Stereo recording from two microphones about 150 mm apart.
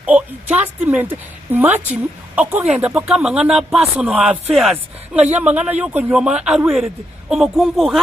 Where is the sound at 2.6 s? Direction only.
5° right (ahead or behind).